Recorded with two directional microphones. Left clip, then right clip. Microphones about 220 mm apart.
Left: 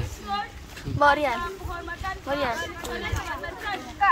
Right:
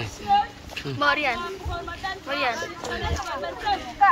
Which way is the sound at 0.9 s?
30° left (ahead or behind).